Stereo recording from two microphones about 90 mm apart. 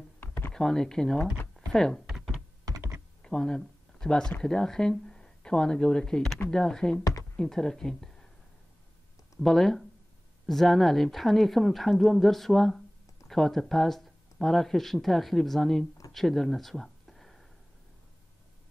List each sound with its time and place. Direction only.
0.5 s speech: 5° left (ahead or behind)
2.0 s typing: 5° right (ahead or behind)
2.6 s computer keyboard: 35° right (ahead or behind)
3.2 s speech: 10° left (ahead or behind)
9.4 s speech: 5° left (ahead or behind)
16.1 s a sound: 5° left (ahead or behind)